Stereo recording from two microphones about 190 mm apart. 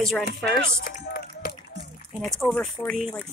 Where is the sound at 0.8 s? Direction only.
50° left (ahead or behind).